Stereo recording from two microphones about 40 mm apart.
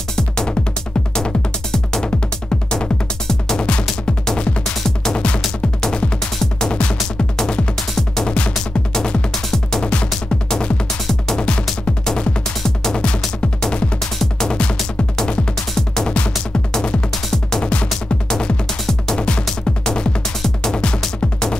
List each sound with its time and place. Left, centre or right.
0.1 s music: centre
5.1 s music: left
6.4 s music: centre
8.9 s music: centre
11.3 s music: left
12.1 s music: centre
17.3 s music: centre
19.1 s music: left